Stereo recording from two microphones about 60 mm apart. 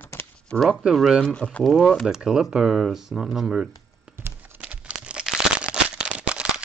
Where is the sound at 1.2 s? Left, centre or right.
Centre.